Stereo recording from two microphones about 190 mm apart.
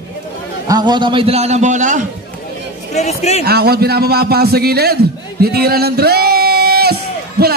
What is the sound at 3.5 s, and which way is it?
A man's voice, 55° right (ahead or behind).